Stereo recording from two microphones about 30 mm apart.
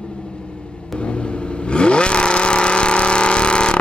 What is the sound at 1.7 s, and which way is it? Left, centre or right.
Vehicle, left.